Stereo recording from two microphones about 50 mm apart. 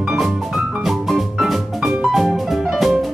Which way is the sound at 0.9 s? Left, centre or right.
Centre.